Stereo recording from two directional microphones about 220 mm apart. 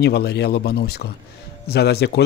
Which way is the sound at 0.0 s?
50° left (ahead or behind).